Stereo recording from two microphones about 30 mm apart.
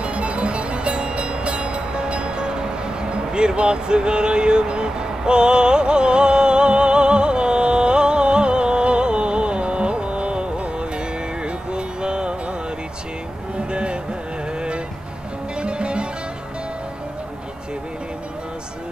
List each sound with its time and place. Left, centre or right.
0.0 s music: right
13.6 s music: right
15.6 s music: right